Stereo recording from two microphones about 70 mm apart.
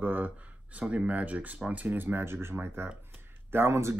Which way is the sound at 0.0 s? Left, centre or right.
Right.